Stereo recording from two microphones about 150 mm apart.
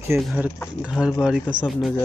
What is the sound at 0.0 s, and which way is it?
Speech, 20° right (ahead or behind).